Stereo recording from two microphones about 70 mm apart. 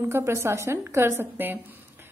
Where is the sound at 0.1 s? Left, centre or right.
Right.